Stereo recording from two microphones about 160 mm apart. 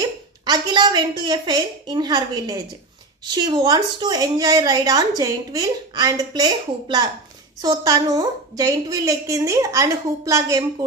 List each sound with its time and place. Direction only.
0.5 s a woman's voice: 30° right (ahead or behind)